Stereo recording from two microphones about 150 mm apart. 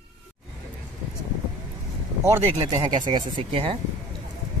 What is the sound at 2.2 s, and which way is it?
Speech, 15° right (ahead or behind).